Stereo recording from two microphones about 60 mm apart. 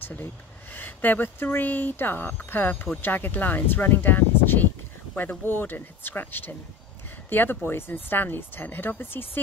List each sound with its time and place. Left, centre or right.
0.0 s speech: left